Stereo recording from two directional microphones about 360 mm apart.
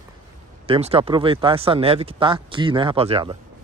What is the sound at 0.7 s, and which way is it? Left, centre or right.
Speech, centre.